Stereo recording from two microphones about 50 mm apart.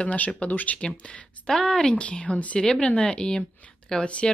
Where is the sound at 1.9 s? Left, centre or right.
Left.